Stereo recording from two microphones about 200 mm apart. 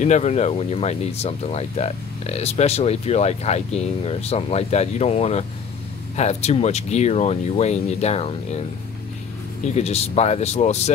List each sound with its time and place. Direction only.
0.0 s speech: 35° left (ahead or behind)
9.8 s speech: 30° left (ahead or behind)